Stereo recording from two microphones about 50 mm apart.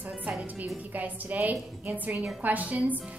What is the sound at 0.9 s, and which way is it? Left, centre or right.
A woman's voice, right.